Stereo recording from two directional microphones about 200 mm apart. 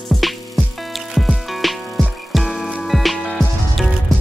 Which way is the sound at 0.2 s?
Centre (ahead or behind).